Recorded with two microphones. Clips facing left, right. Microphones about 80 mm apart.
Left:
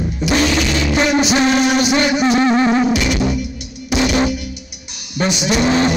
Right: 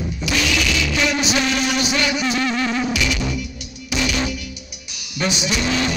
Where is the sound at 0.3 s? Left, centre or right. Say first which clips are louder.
Left 5 dB; left.